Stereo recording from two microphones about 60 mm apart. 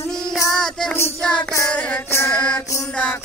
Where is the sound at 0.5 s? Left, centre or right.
Centre.